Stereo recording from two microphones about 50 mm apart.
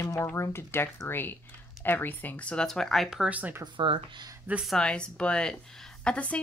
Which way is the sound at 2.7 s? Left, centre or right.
Centre.